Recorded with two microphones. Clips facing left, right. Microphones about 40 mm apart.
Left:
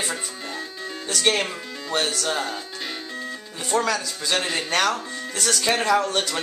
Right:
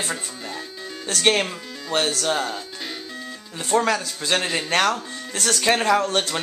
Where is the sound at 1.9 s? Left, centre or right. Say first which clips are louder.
Right 2 dB; centre.